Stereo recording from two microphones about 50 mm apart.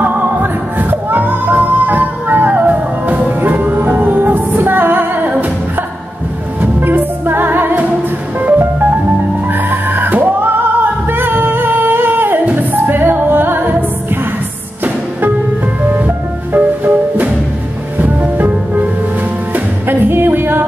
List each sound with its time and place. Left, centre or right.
0.0 s music: right
6.6 s music: right
16.5 s music: right